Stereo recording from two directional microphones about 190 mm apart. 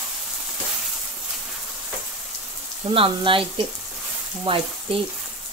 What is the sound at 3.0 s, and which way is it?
Speech, 25° right (ahead or behind).